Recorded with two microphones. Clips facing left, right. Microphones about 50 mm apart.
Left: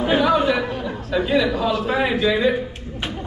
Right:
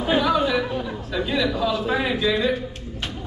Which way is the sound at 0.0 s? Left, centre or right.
Centre.